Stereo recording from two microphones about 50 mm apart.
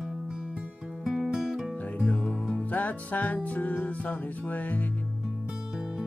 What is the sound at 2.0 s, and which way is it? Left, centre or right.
Music, centre.